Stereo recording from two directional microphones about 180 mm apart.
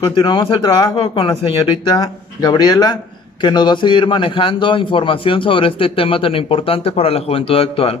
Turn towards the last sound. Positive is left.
turn(degrees=30)  # may be behind; listen again after turning